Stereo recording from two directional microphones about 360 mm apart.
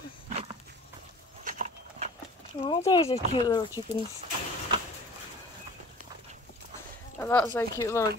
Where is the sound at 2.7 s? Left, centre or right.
Centre.